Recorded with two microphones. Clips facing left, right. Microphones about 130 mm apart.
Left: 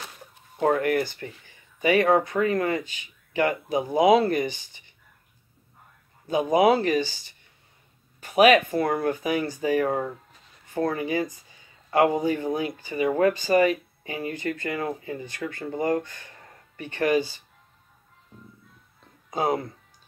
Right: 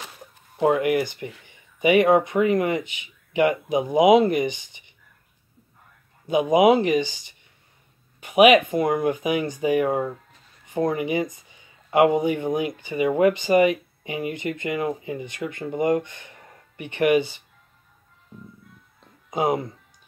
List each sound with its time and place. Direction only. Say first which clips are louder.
0.6 s speech: right 2 dB; 15° right (ahead or behind)
6.2 s speech: right 3 dB; 15° right (ahead or behind)
19.3 s speech: right 2 dB; 15° right (ahead or behind)